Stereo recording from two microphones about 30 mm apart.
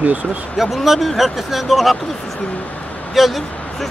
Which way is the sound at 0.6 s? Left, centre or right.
Centre.